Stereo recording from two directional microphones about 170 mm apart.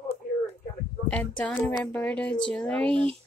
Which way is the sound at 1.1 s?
10° left (ahead or behind).